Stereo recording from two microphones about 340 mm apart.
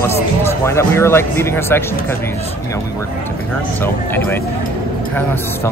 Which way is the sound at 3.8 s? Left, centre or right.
Centre.